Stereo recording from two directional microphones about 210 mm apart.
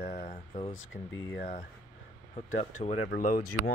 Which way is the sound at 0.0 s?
40° left (ahead or behind).